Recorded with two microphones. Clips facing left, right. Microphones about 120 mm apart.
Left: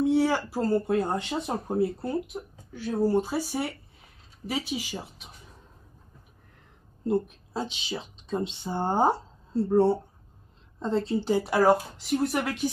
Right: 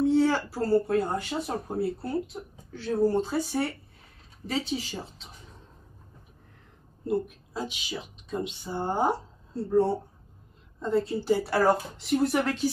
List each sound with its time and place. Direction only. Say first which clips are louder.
0.0 s speech: right 1 dB; 15° left (ahead or behind)
7.1 s a woman's voice: left 2 dB; 25° left (ahead or behind)
12.0 s speech: right 2 dB; centre (ahead or behind)